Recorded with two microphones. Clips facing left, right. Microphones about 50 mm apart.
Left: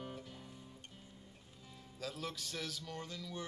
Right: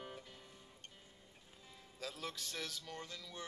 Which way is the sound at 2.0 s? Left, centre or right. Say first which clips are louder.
Left 2 dB; centre.